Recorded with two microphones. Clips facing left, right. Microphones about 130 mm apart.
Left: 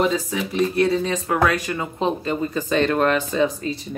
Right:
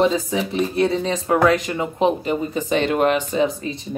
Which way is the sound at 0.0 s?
30° right (ahead or behind).